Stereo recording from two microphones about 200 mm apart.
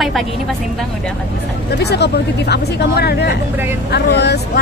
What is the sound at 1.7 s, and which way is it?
Speech, 55° left (ahead or behind).